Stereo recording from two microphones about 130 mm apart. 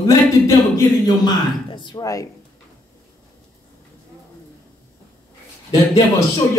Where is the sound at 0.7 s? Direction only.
30° left (ahead or behind).